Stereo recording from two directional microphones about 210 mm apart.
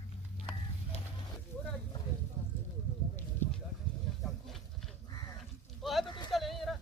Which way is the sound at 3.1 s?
10° left (ahead or behind).